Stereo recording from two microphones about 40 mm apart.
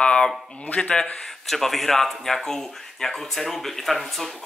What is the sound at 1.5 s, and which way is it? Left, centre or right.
Speech, centre.